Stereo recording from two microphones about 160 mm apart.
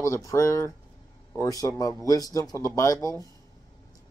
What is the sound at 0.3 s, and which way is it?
Speech, 20° left (ahead or behind).